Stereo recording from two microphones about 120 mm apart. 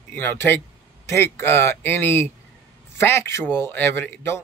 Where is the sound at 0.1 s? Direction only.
15° left (ahead or behind).